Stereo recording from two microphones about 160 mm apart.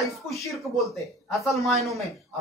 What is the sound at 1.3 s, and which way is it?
Speech, centre (ahead or behind).